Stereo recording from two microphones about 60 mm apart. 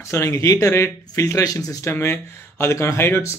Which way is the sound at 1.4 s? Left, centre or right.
Left.